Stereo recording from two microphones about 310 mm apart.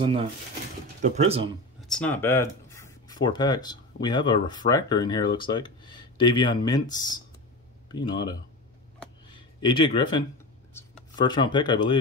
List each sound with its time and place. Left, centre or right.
0.0 s speech: centre
1.8 s speech: centre